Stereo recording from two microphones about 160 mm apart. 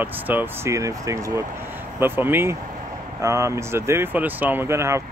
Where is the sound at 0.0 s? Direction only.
10° right (ahead or behind).